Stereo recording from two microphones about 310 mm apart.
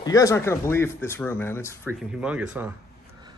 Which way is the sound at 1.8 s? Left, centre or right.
Centre.